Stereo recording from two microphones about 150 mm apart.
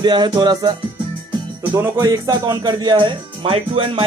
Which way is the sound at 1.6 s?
10° right (ahead or behind).